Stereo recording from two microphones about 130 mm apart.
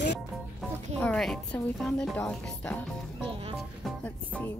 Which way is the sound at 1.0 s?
5° left (ahead or behind).